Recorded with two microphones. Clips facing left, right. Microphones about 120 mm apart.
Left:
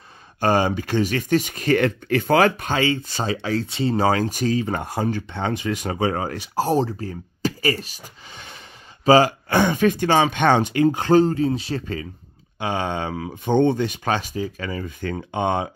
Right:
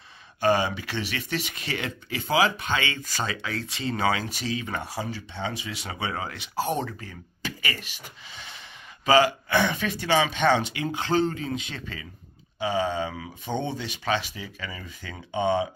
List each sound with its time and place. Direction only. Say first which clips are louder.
0.4 s speech: left 4 dB; 45° left (ahead or behind)
12.5 s speech: left 1 dB; 55° left (ahead or behind)